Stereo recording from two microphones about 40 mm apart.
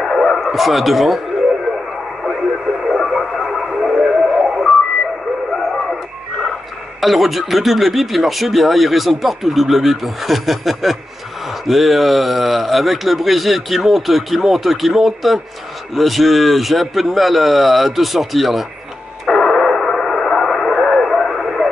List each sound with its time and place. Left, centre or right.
0.0 s bow-wow: centre
0.4 s speech: centre
2.2 s radio: centre
3.1 s a sound: centre
4.0 s a sound: centre
5.6 s radio: centre
7.0 s speech: centre
19.2 s radio: centre